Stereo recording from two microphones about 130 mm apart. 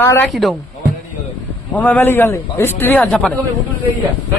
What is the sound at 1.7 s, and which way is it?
A man's voice, 10° left (ahead or behind).